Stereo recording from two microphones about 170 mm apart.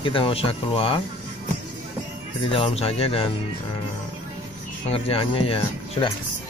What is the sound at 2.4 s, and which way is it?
Speech, 30° left (ahead or behind).